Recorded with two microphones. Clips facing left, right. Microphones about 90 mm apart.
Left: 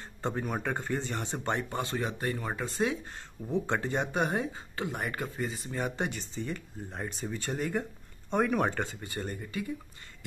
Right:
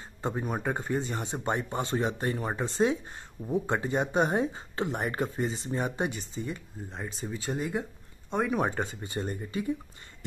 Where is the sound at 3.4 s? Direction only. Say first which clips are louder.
Right 2 dB; 15° right (ahead or behind).